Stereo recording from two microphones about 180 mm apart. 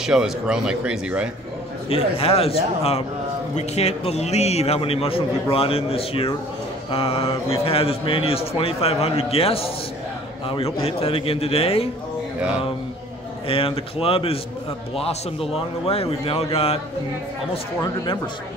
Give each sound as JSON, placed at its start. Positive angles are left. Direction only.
{"t": 0.0, "sound": "speech", "side_deg": -5}
{"t": 1.9, "sound": "a man's voice", "side_deg": 30}
{"t": 13.5, "sound": "a man's voice", "side_deg": 30}
{"t": 17.7, "sound": "speech", "side_deg": 20}